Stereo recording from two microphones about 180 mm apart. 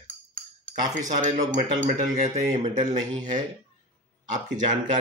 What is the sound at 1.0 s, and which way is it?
Speech, 45° right (ahead or behind).